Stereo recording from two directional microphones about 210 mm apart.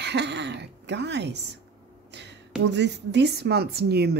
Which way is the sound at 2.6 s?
55° right (ahead or behind).